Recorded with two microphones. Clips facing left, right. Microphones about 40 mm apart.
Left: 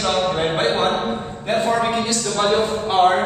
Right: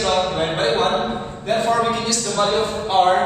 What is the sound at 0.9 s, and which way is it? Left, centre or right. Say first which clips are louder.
Speech: right 1 dB; centre.